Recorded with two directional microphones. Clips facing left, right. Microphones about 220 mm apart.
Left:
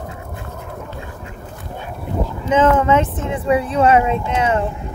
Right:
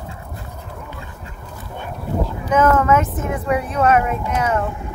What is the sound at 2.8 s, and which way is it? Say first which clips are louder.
Speech: left 1 dB; 25° left (ahead or behind).